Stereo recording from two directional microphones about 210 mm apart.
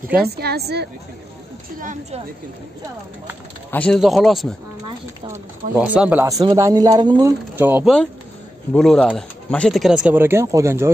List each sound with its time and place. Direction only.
0.4 s speech: 50° right (ahead or behind)
1.8 s speech: 35° right (ahead or behind)
3.7 s speech: 5° left (ahead or behind)
4.8 s speech: 20° right (ahead or behind)
5.8 s speech: 5° right (ahead or behind)
8.7 s speech: centre (ahead or behind); by 10.9 s 15° right (ahead or behind)